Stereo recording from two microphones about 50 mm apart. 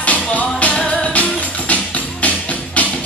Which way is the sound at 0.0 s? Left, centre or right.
Left.